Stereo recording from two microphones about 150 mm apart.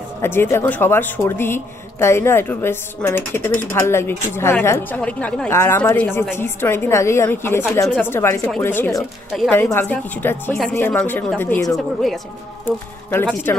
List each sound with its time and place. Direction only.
0.2 s speech: 15° left (ahead or behind)
11.7 s speech: centre (ahead or behind)
12.6 s speech: 10° left (ahead or behind)